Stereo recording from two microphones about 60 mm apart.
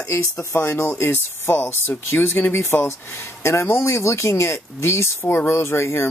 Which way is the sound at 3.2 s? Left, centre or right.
Left.